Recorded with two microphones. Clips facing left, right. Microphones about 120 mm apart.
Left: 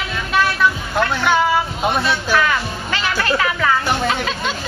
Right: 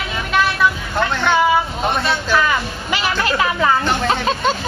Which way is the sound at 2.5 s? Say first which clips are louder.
Right 1 dB; 15° right (ahead or behind).